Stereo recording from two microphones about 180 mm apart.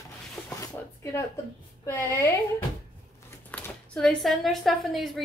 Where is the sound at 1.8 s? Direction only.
15° left (ahead or behind).